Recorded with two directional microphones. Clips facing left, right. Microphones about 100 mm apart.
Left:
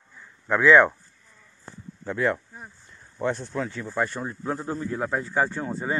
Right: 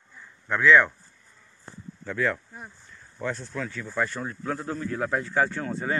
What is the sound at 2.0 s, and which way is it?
Speech, 25° left (ahead or behind).